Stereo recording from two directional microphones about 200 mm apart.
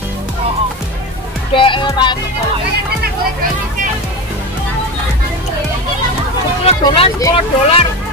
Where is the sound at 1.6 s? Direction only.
25° left (ahead or behind).